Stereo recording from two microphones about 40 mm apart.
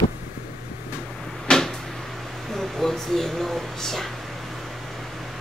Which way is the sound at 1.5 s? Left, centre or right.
Left.